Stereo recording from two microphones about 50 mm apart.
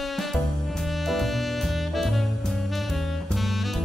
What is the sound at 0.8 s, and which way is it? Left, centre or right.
Music, centre.